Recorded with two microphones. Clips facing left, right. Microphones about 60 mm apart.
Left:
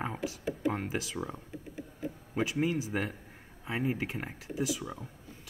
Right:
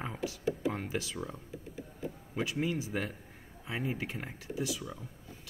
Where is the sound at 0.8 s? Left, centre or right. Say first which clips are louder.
Left 2 dB; centre.